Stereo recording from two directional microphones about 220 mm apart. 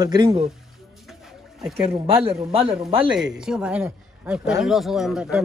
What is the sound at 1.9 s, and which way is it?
Speech, 25° right (ahead or behind).